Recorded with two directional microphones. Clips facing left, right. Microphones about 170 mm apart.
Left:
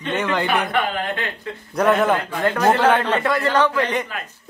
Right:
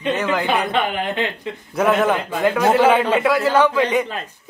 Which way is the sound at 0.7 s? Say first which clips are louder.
Right 2 dB; 20° right (ahead or behind).